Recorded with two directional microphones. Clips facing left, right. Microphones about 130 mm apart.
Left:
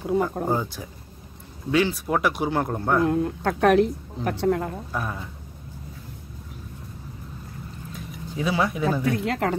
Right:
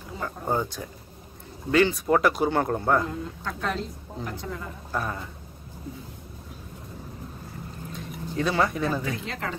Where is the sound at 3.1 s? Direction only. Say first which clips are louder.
Left 10 dB; 65° left (ahead or behind).